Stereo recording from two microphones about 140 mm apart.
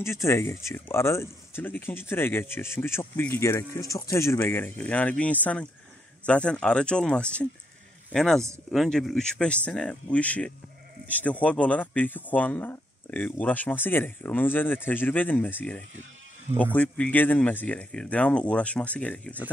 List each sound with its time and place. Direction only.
0.0 s speech: 20° left (ahead or behind)